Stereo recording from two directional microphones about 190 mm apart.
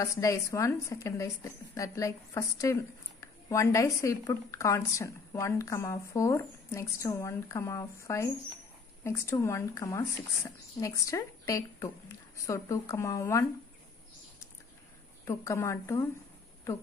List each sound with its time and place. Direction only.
0.0 s a woman's voice: 15° left (ahead or behind)
15.2 s a woman's voice: 15° left (ahead or behind)